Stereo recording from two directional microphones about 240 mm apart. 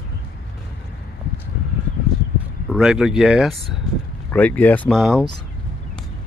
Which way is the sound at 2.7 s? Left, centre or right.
Centre.